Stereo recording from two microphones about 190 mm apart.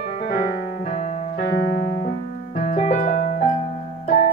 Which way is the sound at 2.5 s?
40° left (ahead or behind).